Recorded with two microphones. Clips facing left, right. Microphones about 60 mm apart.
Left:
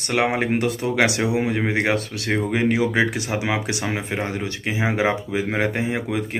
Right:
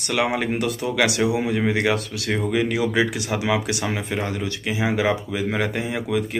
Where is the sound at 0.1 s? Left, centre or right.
Left.